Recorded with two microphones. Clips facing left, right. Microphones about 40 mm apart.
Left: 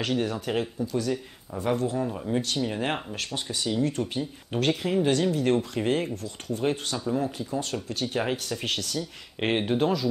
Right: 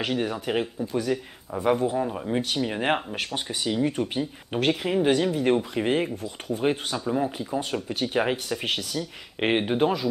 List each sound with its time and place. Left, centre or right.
0.0 s speech: centre